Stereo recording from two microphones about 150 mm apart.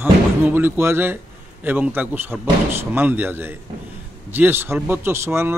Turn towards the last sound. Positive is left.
turn(degrees=-15)  # may be behind; listen again after turning